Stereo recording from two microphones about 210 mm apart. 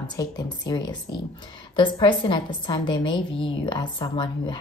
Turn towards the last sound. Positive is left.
turn(degrees=20)  # may be behind; listen again after turning